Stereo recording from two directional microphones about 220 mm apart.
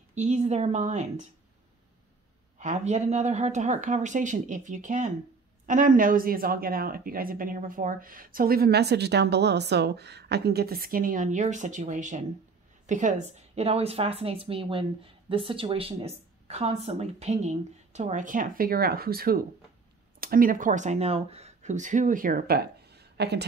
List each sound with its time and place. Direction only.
0.1 s a woman's voice: 30° right (ahead or behind)
2.6 s a woman's voice: 30° right (ahead or behind); by 23.4 s 50° right (ahead or behind)